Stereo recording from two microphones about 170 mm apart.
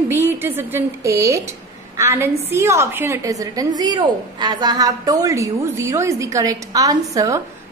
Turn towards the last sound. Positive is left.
turn(degrees=-20)  # may be behind; listen again after turning